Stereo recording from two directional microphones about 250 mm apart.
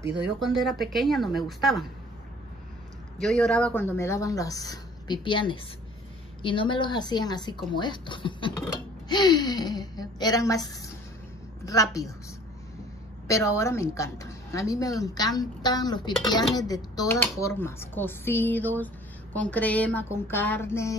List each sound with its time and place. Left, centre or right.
0.4 s speech: centre
3.2 s a woman's voice: centre
13.3 s a woman's voice: centre